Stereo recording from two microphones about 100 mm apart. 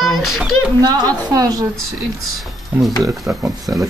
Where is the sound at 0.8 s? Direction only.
40° right (ahead or behind).